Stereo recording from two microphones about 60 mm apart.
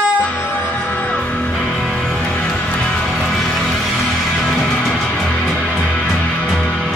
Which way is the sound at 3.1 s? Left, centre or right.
Centre.